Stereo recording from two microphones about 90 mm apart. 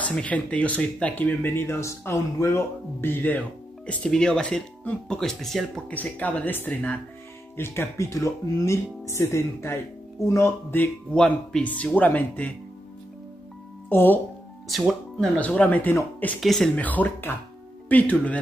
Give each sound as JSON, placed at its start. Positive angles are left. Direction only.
{"t": 0.0, "sound": "speech", "side_deg": 15}
{"t": 5.9, "sound": "speech", "side_deg": 15}
{"t": 10.8, "sound": "speech", "side_deg": 15}
{"t": 13.8, "sound": "speech", "side_deg": 20}
{"t": 14.7, "sound": "speech", "side_deg": 0}
{"t": 15.3, "sound": "speech", "side_deg": 15}
{"t": 16.3, "sound": "speech", "side_deg": 5}
{"t": 16.7, "sound": "speech", "side_deg": 20}